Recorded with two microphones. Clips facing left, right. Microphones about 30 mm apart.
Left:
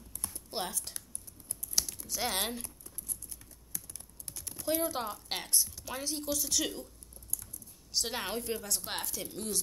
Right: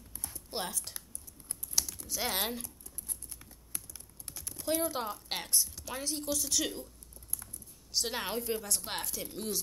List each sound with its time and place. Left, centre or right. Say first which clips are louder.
0.5 s a woman's voice: even; centre
3.7 s typing: even; right
4.5 s a woman's voice: even; centre
7.9 s a woman's voice: right 1 dB; centre